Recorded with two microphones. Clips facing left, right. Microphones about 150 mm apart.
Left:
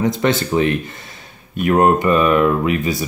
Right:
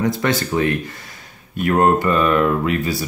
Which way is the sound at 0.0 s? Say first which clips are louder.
Left 2 dB; 20° left (ahead or behind).